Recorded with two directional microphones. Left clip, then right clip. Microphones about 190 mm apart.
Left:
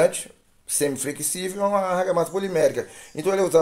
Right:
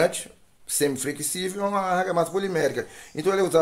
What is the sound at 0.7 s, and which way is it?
Speech, 5° right (ahead or behind).